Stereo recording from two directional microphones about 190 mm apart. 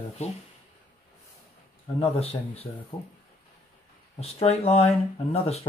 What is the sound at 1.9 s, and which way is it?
Speech, 30° left (ahead or behind).